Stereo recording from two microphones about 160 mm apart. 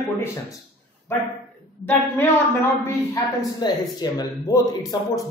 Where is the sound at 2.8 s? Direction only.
20° left (ahead or behind).